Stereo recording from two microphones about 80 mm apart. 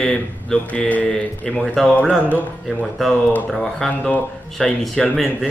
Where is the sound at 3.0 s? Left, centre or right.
Centre.